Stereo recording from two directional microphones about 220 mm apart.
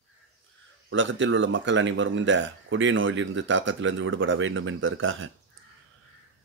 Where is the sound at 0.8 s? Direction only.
60° right (ahead or behind).